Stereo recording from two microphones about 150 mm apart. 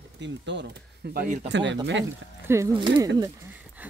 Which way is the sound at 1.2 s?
60° right (ahead or behind).